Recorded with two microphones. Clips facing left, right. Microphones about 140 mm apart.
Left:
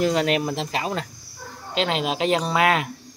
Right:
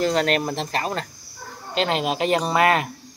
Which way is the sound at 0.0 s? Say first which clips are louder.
Even; 10° left (ahead or behind).